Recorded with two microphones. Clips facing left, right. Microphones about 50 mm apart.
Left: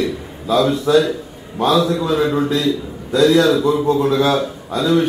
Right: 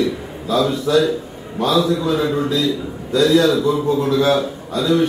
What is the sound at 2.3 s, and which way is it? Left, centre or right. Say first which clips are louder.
Speech: left 1 dB; left.